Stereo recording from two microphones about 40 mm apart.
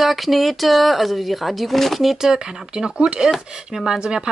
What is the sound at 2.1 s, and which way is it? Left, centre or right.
Speech, centre.